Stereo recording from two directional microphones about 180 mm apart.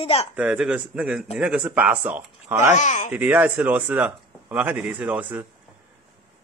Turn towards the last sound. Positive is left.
turn(degrees=-10)  # may be behind; listen again after turning